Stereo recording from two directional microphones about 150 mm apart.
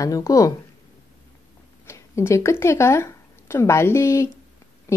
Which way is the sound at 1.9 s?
20° left (ahead or behind).